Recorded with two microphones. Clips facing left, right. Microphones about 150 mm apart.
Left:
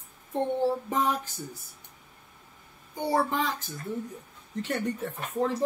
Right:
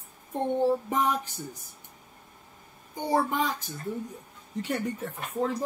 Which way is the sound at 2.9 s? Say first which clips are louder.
Even; 15° right (ahead or behind).